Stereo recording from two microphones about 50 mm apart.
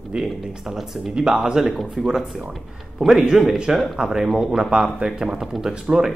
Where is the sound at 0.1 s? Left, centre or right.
Centre.